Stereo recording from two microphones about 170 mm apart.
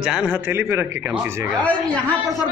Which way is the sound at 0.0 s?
5° right (ahead or behind).